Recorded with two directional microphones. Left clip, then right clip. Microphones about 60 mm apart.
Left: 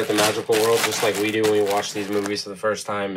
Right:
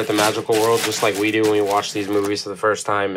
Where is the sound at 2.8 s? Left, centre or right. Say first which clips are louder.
Right 6 dB; centre.